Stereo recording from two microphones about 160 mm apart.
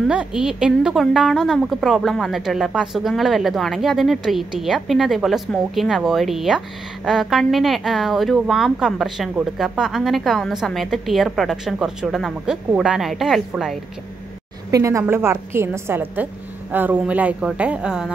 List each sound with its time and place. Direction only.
0.1 s speech: 5° right (ahead or behind)
14.7 s a woman's voice: 20° right (ahead or behind)